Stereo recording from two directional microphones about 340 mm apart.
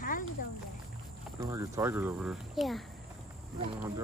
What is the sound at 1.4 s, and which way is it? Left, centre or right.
Speech, centre.